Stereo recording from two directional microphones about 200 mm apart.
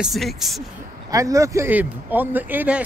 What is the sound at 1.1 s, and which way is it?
Speech, 15° right (ahead or behind).